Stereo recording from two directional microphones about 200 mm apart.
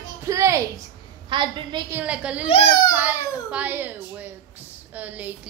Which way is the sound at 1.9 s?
5° right (ahead or behind).